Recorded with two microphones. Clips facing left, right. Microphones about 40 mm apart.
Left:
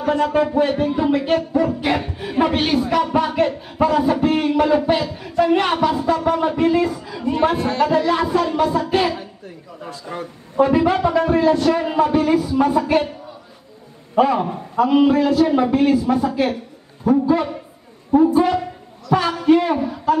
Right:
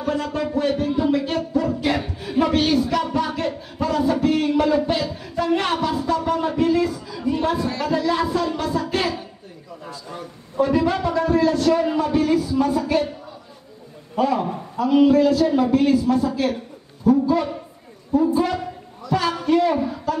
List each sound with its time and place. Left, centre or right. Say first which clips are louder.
0.2 s a man's voice: left 6 dB; left
7.5 s speech: left 3 dB; left
7.8 s a man's voice: left 5 dB; left
10.6 s a man's voice: left 4 dB; left
14.1 s a man's voice: left 4 dB; left
19.0 s a man's voice: left 5 dB; left
19.8 s speech: left 5 dB; centre